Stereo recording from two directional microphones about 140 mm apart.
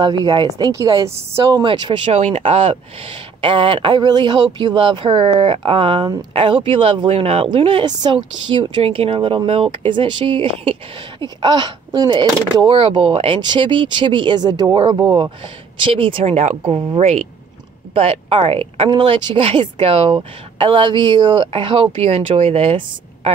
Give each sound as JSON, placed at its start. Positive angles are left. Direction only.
{"t": 0.0, "sound": "a woman's voice", "side_deg": -30}
{"t": 1.6, "sound": "speech", "side_deg": -35}